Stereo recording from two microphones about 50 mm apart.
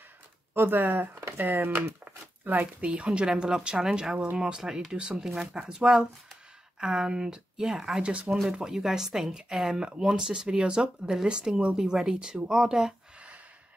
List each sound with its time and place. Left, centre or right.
0.6 s speech: right
2.4 s speech: right
3.2 s speech: centre
8.0 s speech: right
8.5 s speech: centre